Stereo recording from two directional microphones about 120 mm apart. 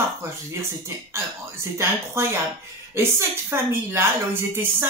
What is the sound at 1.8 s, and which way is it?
A woman's voice, 20° right (ahead or behind).